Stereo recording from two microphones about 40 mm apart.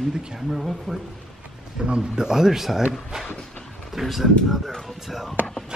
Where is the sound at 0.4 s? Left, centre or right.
Centre.